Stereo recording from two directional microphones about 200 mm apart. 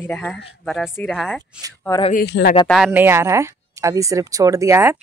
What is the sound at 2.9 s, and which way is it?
Speech, 10° right (ahead or behind).